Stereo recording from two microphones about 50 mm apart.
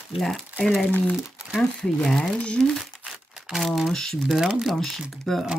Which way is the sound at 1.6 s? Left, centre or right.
Centre.